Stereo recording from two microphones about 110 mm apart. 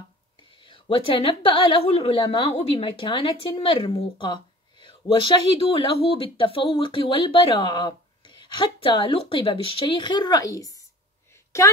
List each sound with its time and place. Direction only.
0.7 s a woman's voice: 55° left (ahead or behind)
2.2 s speech: 55° left (ahead or behind)
10.1 s a woman's voice: 40° left (ahead or behind)